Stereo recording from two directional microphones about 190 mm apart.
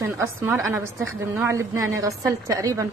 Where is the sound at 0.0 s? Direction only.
15° right (ahead or behind).